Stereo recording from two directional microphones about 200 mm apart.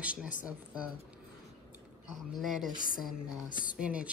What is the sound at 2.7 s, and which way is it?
Speech, 45° left (ahead or behind).